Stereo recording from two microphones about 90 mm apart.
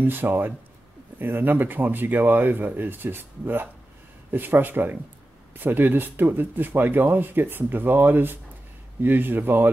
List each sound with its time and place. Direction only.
0.0 s speech: 20° right (ahead or behind)